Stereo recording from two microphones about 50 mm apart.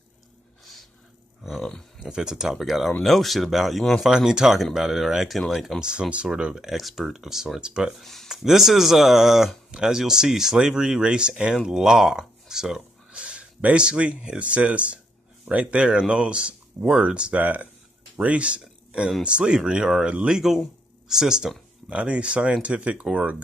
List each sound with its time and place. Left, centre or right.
1.6 s speech: centre
2.0 s speech: centre
5.8 s speech: centre
8.0 s a sound: centre
8.3 s speech: centre
13.1 s speech: right
17.4 s speech: right